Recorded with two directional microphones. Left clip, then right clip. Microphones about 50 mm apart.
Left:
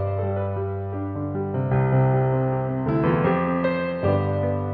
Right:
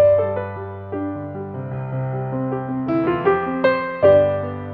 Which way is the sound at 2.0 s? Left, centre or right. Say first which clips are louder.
Left 1 dB; right.